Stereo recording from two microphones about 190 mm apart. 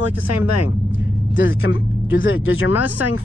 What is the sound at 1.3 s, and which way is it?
Speech, 90° left.